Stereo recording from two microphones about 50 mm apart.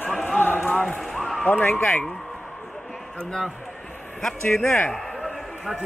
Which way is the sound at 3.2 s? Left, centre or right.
Centre.